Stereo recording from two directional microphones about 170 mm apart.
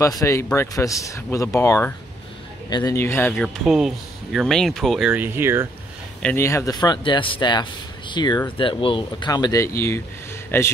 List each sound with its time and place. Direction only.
0.0 s speech: 20° left (ahead or behind)
3.3 s speech: centre (ahead or behind)
6.2 s speech: 15° left (ahead or behind)